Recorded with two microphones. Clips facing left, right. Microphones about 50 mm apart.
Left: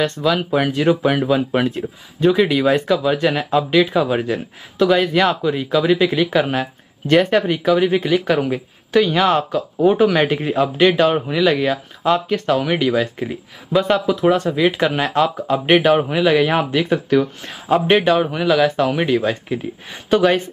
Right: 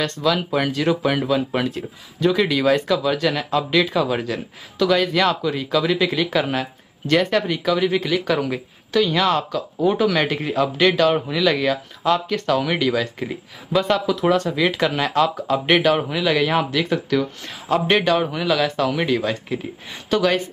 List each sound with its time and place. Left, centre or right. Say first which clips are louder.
0.5 s speech: left 4 dB; centre
9.8 s speech: left 4 dB; left